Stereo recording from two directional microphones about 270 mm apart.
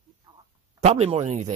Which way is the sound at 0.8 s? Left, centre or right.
Right.